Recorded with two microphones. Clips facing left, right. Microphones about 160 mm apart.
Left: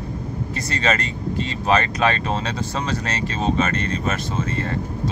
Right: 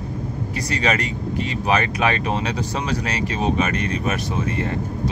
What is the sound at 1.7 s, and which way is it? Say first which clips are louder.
Speech: left 1 dB; 15° right (ahead or behind).